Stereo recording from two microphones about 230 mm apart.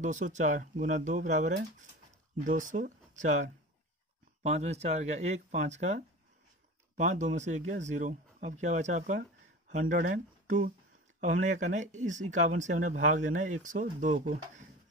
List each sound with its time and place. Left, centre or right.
0.0 s speech: right